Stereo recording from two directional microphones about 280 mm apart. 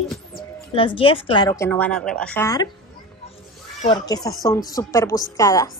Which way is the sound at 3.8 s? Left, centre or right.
Centre.